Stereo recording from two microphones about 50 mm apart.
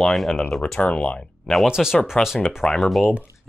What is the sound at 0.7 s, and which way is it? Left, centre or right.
Speech, left.